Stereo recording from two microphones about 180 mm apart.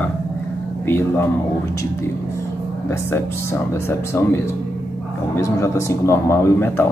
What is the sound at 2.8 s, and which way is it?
Speech, 15° left (ahead or behind).